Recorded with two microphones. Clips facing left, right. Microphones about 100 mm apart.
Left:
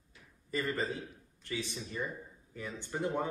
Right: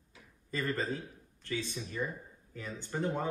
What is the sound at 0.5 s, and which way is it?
A man's voice, 15° left (ahead or behind).